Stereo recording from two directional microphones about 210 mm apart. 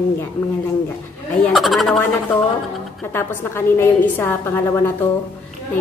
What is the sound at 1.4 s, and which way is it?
Speech, centre (ahead or behind).